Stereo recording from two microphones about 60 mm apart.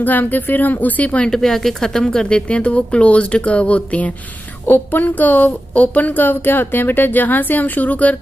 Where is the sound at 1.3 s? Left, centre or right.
Centre.